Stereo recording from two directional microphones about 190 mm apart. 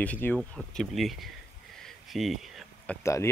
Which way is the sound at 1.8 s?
Centre (ahead or behind).